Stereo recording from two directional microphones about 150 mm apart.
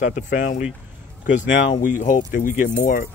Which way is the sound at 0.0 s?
55° left (ahead or behind).